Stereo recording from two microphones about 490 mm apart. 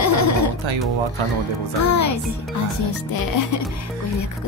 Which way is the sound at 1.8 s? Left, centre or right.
Left.